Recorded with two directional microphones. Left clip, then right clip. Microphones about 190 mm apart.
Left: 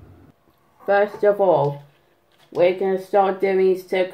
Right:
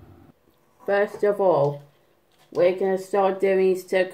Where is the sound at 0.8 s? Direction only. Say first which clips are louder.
Left 4 dB; centre (ahead or behind).